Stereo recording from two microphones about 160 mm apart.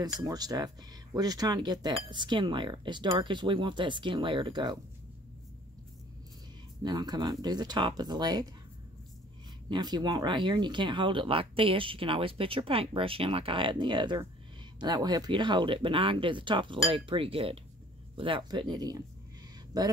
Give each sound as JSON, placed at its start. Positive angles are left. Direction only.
{"t": 0.0, "sound": "speech", "side_deg": -25}
{"t": 6.8, "sound": "speech", "side_deg": -25}
{"t": 9.7, "sound": "speech", "side_deg": -25}